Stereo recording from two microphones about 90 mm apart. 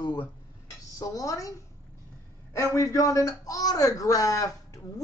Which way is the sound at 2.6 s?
35° left (ahead or behind).